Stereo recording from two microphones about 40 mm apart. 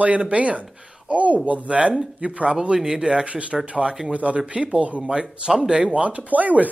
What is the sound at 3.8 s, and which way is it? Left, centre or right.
Speech, centre.